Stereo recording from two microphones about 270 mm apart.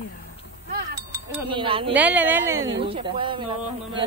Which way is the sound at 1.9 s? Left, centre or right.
Centre.